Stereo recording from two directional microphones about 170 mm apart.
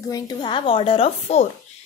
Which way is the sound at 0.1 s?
25° left (ahead or behind).